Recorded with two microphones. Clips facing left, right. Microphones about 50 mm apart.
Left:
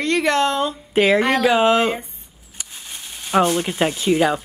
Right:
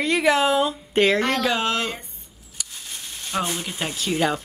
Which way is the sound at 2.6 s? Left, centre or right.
Centre.